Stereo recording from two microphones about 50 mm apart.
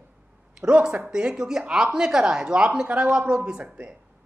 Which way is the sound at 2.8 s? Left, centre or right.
Right.